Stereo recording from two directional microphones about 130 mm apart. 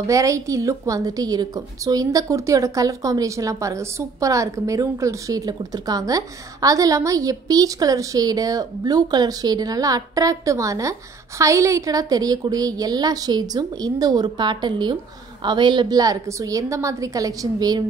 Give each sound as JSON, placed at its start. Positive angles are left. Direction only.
{"t": 0.0, "sound": "a woman's voice", "side_deg": -25}